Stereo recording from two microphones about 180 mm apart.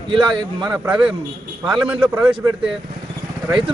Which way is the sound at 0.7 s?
5° right (ahead or behind).